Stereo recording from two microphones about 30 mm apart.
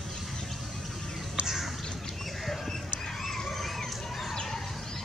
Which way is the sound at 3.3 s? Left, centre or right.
Centre.